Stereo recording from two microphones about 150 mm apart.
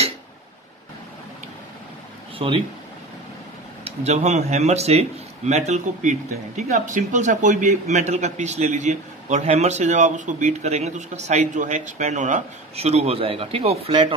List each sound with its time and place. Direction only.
2.3 s speech: 35° right (ahead or behind)
3.8 s speech: 50° right (ahead or behind)